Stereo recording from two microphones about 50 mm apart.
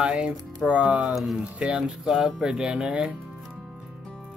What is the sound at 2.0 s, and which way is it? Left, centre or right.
Speech, centre.